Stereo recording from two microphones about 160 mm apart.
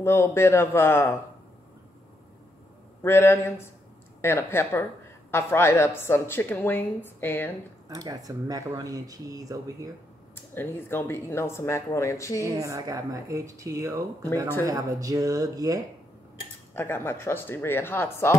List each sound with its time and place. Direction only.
0.0 s a woman's voice: 15° left (ahead or behind)
3.0 s a woman's voice: 15° left (ahead or behind)
7.9 s speech: 25° right (ahead or behind)
10.3 s a woman's voice: 15° left (ahead or behind)
12.5 s speech: 20° right (ahead or behind)
16.7 s a woman's voice: 15° left (ahead or behind)